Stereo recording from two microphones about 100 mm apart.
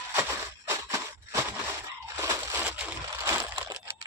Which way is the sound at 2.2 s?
35° right (ahead or behind).